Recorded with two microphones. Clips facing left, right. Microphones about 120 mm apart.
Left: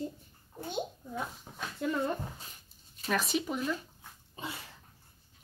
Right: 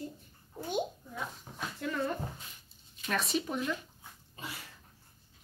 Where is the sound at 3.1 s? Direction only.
Centre (ahead or behind).